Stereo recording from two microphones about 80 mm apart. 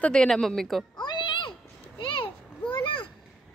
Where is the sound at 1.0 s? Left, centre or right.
Left.